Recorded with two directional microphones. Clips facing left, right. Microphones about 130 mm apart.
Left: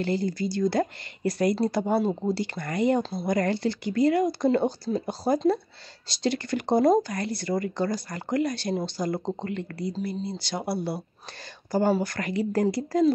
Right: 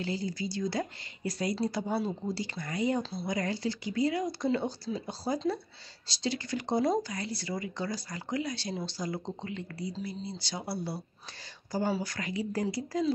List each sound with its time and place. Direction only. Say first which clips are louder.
0.0 s speech: left 7 dB; 60° left (ahead or behind)